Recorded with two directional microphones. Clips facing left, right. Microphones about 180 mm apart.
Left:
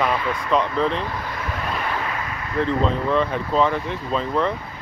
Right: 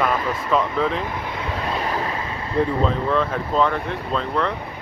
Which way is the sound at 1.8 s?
35° right (ahead or behind).